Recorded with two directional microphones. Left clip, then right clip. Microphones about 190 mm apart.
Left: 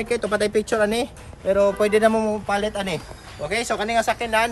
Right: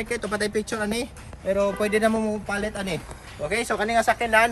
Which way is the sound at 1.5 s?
35° left (ahead or behind).